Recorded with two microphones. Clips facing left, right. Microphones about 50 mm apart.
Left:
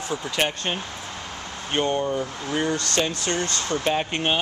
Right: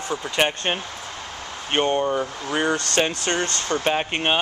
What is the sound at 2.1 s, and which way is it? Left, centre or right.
Speech, right.